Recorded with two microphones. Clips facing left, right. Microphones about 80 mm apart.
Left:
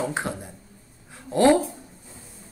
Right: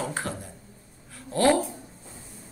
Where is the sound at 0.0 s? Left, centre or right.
Left.